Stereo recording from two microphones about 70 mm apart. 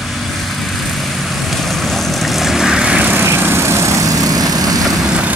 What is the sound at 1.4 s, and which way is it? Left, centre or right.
Vehicle, centre.